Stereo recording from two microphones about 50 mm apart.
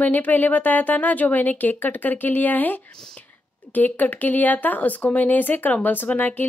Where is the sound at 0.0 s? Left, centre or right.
Left.